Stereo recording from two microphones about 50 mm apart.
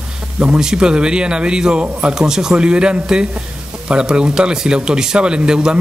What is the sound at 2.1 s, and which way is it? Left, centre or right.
Speech, centre.